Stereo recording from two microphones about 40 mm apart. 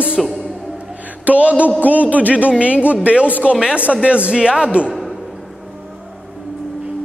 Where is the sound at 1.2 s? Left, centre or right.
Right.